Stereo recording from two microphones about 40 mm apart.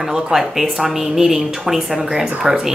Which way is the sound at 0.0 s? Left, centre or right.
Centre.